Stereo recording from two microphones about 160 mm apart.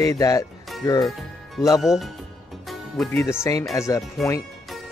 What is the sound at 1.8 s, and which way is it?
Speech, centre (ahead or behind).